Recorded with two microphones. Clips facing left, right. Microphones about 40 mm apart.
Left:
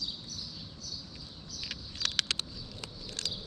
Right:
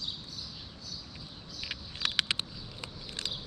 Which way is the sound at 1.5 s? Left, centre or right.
Centre.